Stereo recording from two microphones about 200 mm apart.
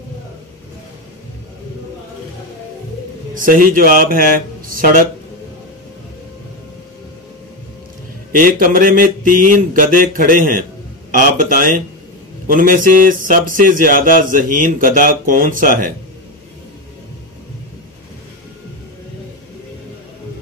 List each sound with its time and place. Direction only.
3.3 s speech: 45° right (ahead or behind)
8.3 s speech: 45° right (ahead or behind)